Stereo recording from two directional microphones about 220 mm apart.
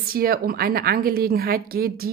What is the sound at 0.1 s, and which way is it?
A woman's voice, 40° right (ahead or behind).